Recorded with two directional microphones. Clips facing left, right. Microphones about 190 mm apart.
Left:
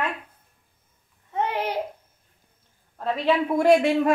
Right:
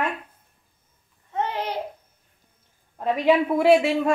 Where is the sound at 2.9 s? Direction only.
15° right (ahead or behind).